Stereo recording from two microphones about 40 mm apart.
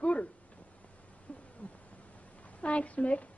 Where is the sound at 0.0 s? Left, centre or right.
Left.